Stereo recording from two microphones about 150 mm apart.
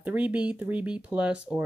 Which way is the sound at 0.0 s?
10° right (ahead or behind).